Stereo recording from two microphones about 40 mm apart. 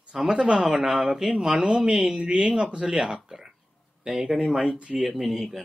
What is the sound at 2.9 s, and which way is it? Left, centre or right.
Speech, centre.